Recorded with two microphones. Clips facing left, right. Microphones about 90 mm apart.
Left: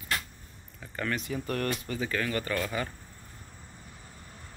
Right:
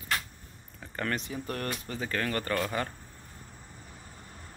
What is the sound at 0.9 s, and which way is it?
Speech, 35° right (ahead or behind).